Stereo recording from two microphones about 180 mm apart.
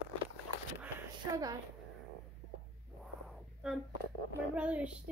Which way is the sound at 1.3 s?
20° right (ahead or behind).